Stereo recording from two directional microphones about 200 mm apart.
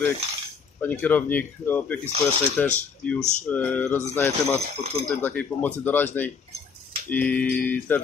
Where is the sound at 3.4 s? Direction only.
5° left (ahead or behind).